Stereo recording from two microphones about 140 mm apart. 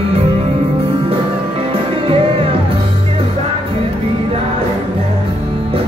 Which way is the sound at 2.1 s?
40° right (ahead or behind).